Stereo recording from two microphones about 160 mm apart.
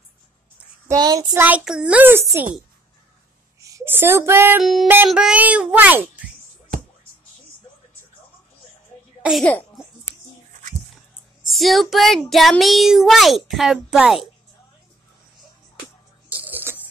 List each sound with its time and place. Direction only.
0.8 s a child's voice: 25° right (ahead or behind)
1.4 s speech: 5° right (ahead or behind)
3.6 s speech: 15° right (ahead or behind)
4.6 s speech: centre (ahead or behind)
6.7 s music: 60° right (ahead or behind)
9.4 s a child's voice: 10° left (ahead or behind)
11.4 s speech: centre (ahead or behind)
16.3 s a sound: 10° right (ahead or behind)